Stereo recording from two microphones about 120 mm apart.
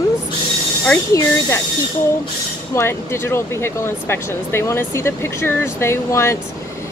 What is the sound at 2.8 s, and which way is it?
Speech, 20° left (ahead or behind).